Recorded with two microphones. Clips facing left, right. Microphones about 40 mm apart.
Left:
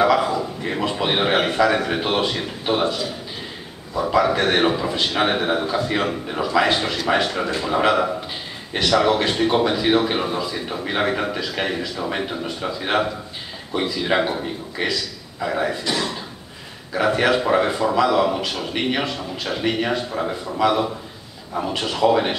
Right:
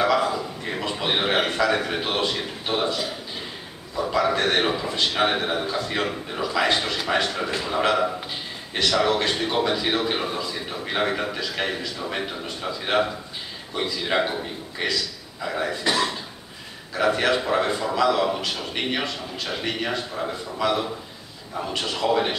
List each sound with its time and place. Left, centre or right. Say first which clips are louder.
0.0 s a sound: left 4 dB; centre
3.9 s a man's voice: left 4 dB; centre
15.8 s speech: right 1 dB; centre
16.9 s a man's voice: left 3 dB; centre